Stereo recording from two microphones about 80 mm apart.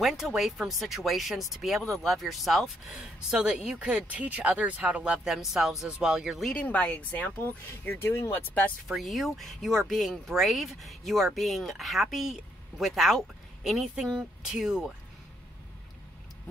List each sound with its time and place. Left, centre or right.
0.0 s speech: centre
6.5 s speech: centre
8.8 s speech: centre